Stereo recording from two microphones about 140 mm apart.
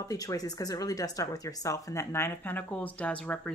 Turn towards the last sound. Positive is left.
turn(degrees=10)  # may be behind; listen again after turning